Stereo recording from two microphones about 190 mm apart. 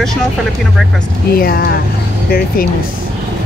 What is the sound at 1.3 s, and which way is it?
Speech, 50° left (ahead or behind).